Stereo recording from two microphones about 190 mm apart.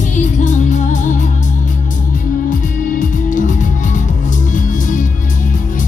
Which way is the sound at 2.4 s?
45° left (ahead or behind).